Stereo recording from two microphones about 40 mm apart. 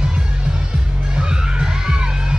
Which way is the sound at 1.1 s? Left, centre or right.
Centre.